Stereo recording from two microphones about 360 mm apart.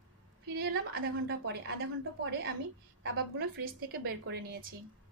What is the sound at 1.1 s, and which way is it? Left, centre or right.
A woman's voice, right.